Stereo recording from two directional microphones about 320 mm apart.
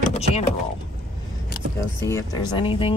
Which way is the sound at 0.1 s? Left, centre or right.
Centre.